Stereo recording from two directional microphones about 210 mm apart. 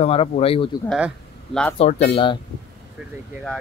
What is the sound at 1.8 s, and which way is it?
Speech, 30° left (ahead or behind).